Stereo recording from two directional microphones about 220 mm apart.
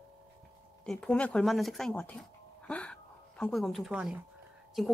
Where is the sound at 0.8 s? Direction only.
5° left (ahead or behind).